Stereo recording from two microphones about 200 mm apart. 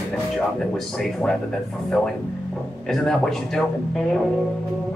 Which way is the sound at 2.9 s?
Centre (ahead or behind).